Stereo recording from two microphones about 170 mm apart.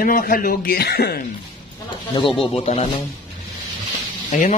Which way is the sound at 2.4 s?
35° left (ahead or behind).